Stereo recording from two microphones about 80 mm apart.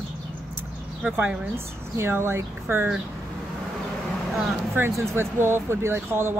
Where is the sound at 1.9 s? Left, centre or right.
Right.